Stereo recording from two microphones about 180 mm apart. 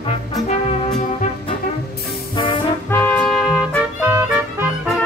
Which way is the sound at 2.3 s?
30° left (ahead or behind).